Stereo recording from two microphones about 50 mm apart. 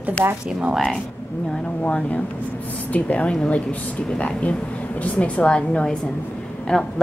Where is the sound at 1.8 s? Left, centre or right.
Left.